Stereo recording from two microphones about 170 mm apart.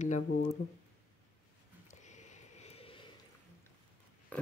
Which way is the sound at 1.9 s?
45° left (ahead or behind).